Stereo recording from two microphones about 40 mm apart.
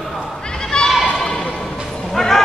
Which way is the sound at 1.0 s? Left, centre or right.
Left.